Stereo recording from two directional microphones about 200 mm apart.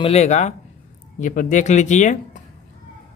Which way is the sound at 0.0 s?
30° left (ahead or behind).